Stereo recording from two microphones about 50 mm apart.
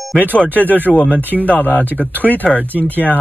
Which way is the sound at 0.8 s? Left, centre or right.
Left.